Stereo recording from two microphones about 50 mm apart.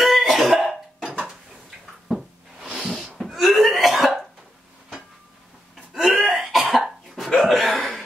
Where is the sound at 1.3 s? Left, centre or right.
Centre.